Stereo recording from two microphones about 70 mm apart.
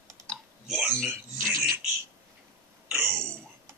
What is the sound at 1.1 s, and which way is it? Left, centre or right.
Speech, right.